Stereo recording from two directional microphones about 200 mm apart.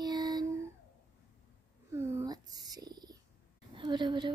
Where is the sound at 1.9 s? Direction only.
15° right (ahead or behind).